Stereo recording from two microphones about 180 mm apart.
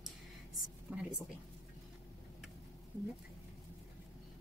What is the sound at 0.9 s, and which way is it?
Speech, 5° right (ahead or behind).